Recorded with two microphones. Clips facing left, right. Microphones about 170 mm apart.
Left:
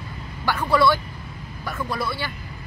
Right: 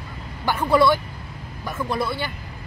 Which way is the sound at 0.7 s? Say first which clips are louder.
Right 2 dB; 20° right (ahead or behind).